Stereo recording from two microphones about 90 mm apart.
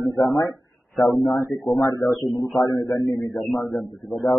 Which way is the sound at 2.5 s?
50° left (ahead or behind).